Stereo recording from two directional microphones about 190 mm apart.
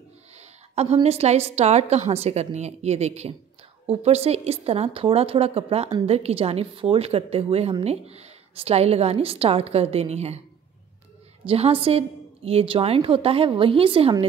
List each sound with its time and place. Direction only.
0.4 s a woman's voice: 35° right (ahead or behind)
11.4 s a woman's voice: 30° right (ahead or behind)